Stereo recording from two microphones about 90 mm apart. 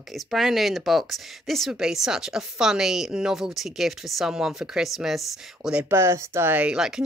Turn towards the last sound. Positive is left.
turn(degrees=-10)  # may be behind; listen again after turning